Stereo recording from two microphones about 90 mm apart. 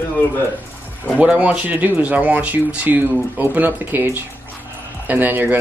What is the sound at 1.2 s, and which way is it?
Speech, 15° right (ahead or behind).